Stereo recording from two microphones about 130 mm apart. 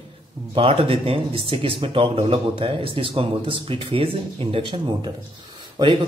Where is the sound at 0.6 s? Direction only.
45° right (ahead or behind).